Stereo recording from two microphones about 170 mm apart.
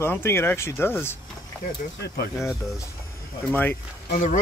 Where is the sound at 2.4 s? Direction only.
15° left (ahead or behind).